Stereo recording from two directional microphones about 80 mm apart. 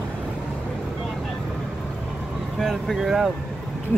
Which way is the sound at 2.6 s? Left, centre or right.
Centre.